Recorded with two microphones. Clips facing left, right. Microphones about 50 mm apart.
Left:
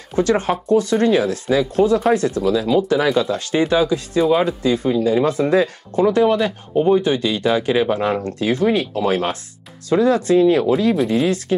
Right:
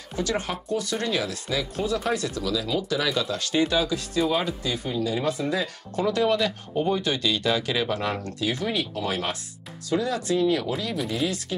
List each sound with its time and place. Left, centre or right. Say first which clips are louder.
0.1 s speech: left 10 dB; left
5.9 s speech: left 8 dB; left